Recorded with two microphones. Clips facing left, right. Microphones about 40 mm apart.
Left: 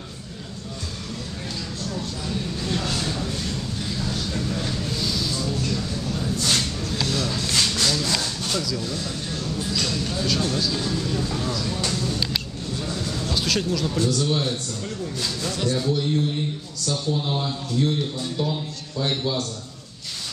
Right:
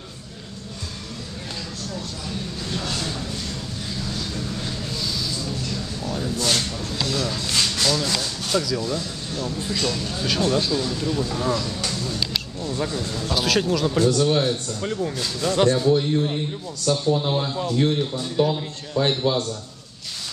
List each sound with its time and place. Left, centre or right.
1.9 s a sound: centre
5.4 s music: centre
7.1 s a sound: centre
8.5 s speech: centre
10.7 s a man's voice: centre; by 15.1 s right
15.1 s speech: centre
15.5 s a man's voice: right
15.8 s a man's voice: right
17.6 s a man's voice: right